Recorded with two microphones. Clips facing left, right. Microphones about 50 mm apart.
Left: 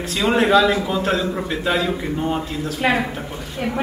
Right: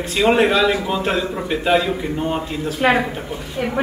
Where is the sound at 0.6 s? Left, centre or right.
Centre.